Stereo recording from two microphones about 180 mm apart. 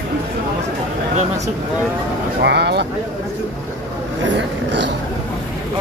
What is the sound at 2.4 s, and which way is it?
Speech, 65° right (ahead or behind).